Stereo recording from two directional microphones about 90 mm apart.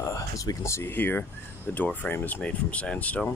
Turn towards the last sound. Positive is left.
turn(degrees=15)  # may be behind; listen again after turning